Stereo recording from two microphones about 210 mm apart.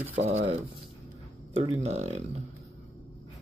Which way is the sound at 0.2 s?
30° right (ahead or behind).